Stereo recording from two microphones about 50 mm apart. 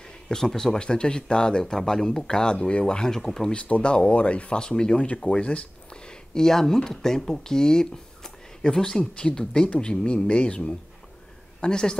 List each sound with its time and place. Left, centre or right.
0.0 s speech: centre
3.2 s speech: centre
3.5 s speech: left